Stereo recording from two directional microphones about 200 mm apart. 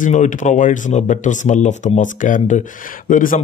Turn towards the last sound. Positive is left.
turn(degrees=40)  # may be behind; listen again after turning